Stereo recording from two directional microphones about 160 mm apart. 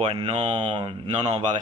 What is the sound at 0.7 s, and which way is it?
Speech, 25° right (ahead or behind).